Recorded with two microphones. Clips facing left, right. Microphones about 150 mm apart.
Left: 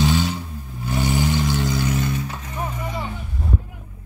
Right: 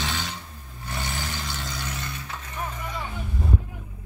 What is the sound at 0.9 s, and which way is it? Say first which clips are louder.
Vehicle: left 12 dB; 10° left (ahead or behind).